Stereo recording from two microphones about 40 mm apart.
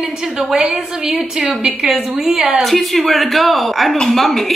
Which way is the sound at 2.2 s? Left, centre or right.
Centre.